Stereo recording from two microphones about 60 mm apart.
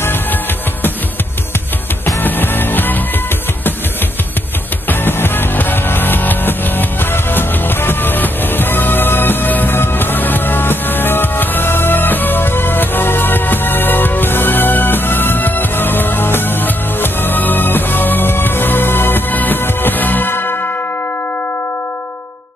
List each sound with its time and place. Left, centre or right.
0.0 s music: left
2.2 s music: left
4.8 s music: left